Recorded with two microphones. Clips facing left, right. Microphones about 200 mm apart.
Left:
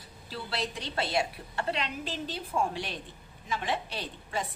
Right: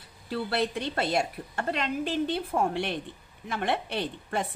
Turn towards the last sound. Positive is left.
turn(degrees=-60)  # may be behind; listen again after turning